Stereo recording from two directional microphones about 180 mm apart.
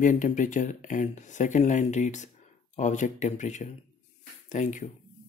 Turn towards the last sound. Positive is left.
turn(degrees=45)  # may be behind; listen again after turning